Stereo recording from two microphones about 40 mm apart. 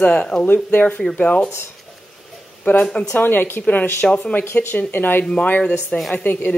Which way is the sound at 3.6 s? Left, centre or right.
Left.